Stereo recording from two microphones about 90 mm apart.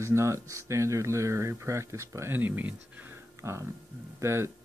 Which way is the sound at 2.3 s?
20° right (ahead or behind).